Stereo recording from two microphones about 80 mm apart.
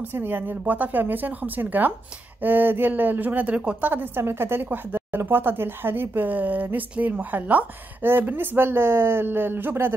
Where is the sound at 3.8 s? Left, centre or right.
Right.